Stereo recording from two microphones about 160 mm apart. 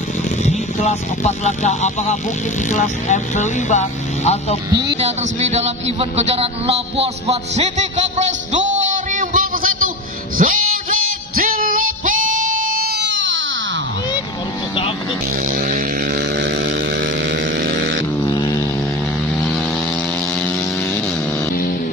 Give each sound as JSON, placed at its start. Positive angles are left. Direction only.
{"t": 0.7, "sound": "speech", "side_deg": 45}
{"t": 4.9, "sound": "a man's voice", "side_deg": -40}
{"t": 10.3, "sound": "music", "side_deg": -60}
{"t": 15.5, "sound": "vehicle", "side_deg": -60}
{"t": 18.2, "sound": "a sound", "side_deg": 25}